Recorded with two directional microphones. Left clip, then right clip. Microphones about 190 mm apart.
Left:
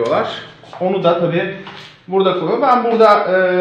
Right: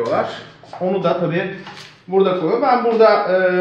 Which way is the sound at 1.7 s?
Centre (ahead or behind).